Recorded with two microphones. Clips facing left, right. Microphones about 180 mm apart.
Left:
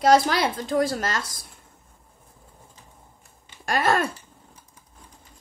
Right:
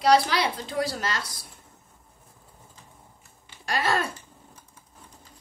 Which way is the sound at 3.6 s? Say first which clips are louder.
Left 4 dB; 50° left (ahead or behind).